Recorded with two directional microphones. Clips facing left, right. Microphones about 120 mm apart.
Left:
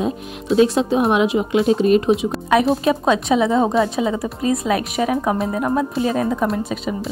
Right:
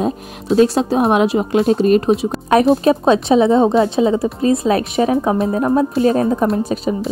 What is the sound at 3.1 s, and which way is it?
A woman's voice, 30° right (ahead or behind).